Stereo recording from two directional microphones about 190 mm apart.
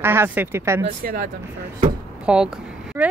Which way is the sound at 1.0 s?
50° right (ahead or behind).